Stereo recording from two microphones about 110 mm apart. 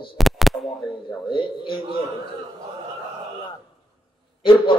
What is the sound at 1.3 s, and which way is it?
Speech, 45° left (ahead or behind).